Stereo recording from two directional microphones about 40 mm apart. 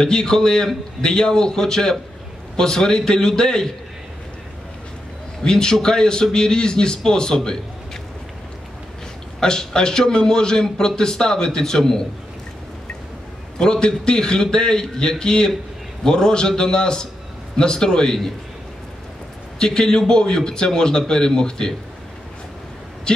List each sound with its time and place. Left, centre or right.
0.0 s a man's voice: centre
5.4 s a man's voice: centre
9.4 s a man's voice: centre
13.6 s a man's voice: centre
19.6 s a man's voice: centre
23.1 s speech: centre